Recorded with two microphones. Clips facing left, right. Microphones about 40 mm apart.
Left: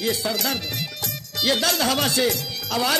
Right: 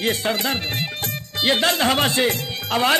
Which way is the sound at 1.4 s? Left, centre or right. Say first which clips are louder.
Right 3 dB; right.